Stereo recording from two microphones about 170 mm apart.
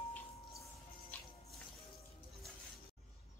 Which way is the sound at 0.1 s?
20° left (ahead or behind).